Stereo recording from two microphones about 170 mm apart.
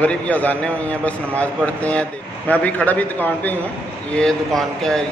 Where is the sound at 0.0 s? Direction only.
10° left (ahead or behind).